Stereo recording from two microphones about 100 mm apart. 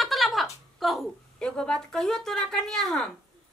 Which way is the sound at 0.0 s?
Centre (ahead or behind).